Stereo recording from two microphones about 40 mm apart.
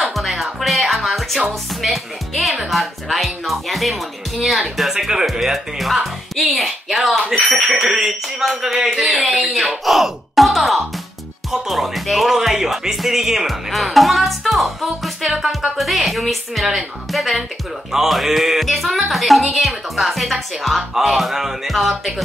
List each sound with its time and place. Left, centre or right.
0.1 s music: centre
1.8 s speech: centre
13.7 s speech: centre